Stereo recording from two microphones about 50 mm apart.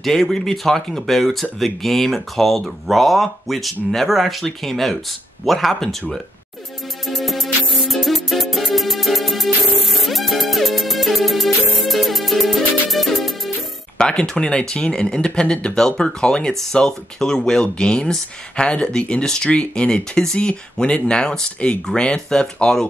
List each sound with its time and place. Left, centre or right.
0.0 s speech: centre
7.1 s music: centre
13.9 s speech: centre